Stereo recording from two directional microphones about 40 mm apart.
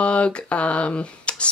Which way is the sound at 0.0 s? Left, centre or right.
Left.